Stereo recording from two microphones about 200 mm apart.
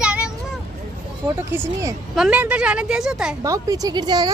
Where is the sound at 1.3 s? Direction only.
15° right (ahead or behind).